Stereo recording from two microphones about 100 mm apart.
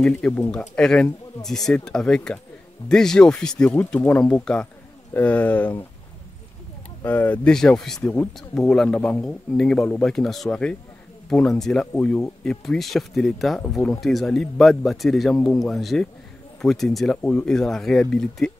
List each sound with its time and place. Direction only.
0.5 s speech: 10° left (ahead or behind)
7.1 s speech: 15° left (ahead or behind)
7.5 s speech: 5° left (ahead or behind)
15.3 s speech: 15° left (ahead or behind)
15.6 s speech: centre (ahead or behind)